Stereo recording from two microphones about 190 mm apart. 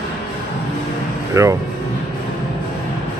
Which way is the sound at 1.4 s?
15° right (ahead or behind).